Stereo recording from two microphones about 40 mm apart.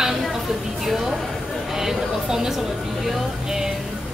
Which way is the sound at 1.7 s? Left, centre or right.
Centre.